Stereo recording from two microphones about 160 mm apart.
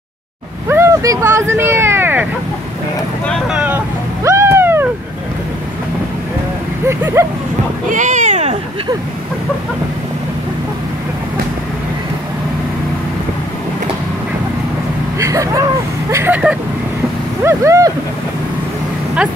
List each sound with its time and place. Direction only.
0.7 s speech: 15° right (ahead or behind)
3.3 s vehicle: centre (ahead or behind)
6.9 s speech: 15° right (ahead or behind)
7.9 s cat: 50° right (ahead or behind)
15.1 s a sound: 20° right (ahead or behind)
16.1 s speech: 15° right (ahead or behind)
17.4 s a sound: 15° right (ahead or behind)